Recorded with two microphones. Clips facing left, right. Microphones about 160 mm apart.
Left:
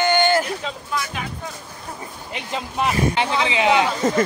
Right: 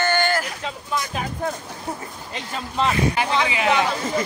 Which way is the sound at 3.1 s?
25° left (ahead or behind).